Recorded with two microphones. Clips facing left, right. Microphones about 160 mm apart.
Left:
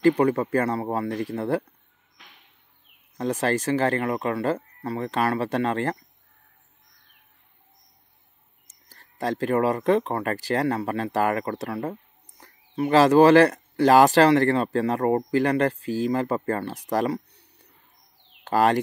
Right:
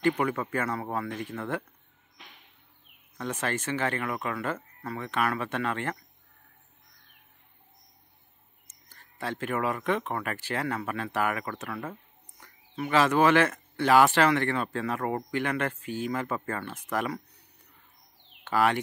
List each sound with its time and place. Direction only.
0.0 s speech: 35° left (ahead or behind)
3.2 s speech: 35° left (ahead or behind)
8.6 s speech: 35° left (ahead or behind)